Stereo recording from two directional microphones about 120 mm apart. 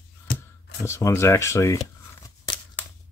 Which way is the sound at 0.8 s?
25° left (ahead or behind).